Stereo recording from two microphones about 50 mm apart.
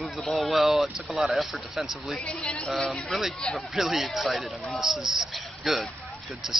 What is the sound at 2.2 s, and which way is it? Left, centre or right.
Speech, left.